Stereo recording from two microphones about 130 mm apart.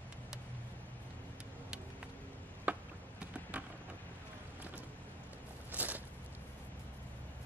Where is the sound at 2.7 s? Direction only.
10° right (ahead or behind).